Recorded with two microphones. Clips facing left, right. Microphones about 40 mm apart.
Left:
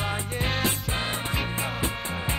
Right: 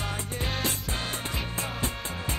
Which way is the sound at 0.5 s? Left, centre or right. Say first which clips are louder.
Left 4 dB; centre.